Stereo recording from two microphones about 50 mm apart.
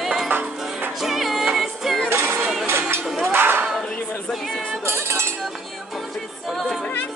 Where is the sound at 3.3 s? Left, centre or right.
Right.